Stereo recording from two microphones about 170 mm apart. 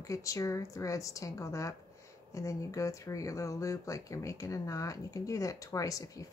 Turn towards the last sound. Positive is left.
turn(degrees=20)  # may be behind; listen again after turning